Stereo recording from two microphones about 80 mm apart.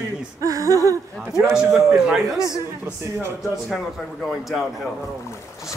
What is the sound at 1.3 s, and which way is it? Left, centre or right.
A man's voice, centre.